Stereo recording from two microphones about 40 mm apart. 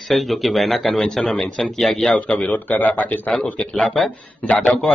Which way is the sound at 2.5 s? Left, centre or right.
Left.